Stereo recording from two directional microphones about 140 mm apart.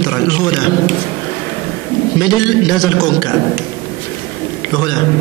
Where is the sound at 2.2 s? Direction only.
30° left (ahead or behind).